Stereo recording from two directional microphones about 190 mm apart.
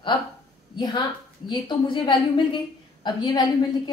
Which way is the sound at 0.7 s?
25° left (ahead or behind).